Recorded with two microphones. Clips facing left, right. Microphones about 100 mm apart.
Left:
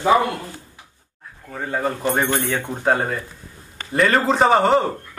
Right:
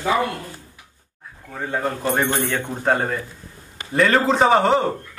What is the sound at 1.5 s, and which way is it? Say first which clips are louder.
A man's voice: left 1 dB; centre (ahead or behind).